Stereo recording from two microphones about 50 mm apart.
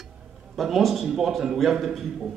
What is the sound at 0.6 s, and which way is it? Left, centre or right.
A man's voice, centre.